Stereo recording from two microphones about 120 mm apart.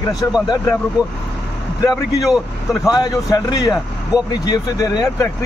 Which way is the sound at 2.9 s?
30° left (ahead or behind).